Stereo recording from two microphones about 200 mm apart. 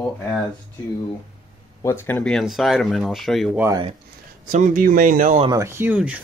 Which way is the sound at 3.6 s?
20° right (ahead or behind).